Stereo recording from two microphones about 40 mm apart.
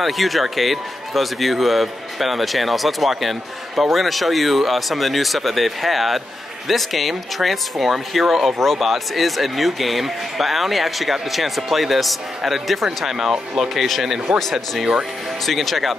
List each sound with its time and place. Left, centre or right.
0.0 s speech: centre
14.3 s speech: right
15.4 s speech: centre